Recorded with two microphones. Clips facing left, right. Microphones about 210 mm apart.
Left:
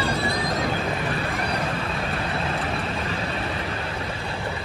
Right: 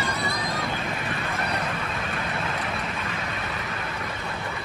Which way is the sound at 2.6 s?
30° left (ahead or behind).